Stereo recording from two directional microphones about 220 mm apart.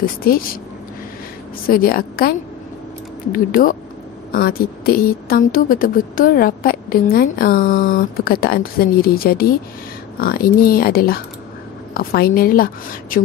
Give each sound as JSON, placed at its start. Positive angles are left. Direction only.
{"t": 0.0, "sound": "speech", "side_deg": 40}
{"t": 1.7, "sound": "speech", "side_deg": 40}